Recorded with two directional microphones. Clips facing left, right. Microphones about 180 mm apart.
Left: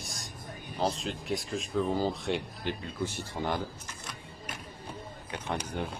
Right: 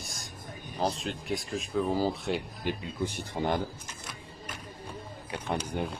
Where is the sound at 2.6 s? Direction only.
15° right (ahead or behind).